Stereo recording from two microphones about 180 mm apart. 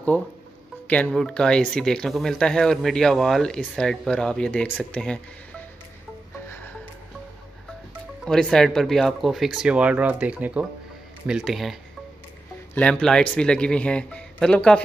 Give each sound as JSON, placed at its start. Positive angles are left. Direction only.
{"t": 0.8, "sound": "speech", "side_deg": 5}
{"t": 8.3, "sound": "speech", "side_deg": 5}
{"t": 12.7, "sound": "speech", "side_deg": 5}